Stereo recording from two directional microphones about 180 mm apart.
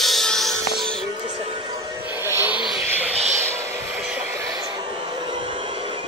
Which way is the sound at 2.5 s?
25° left (ahead or behind).